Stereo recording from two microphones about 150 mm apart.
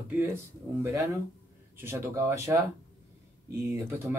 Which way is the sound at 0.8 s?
20° right (ahead or behind).